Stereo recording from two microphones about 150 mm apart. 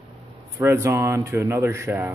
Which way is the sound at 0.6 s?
15° right (ahead or behind).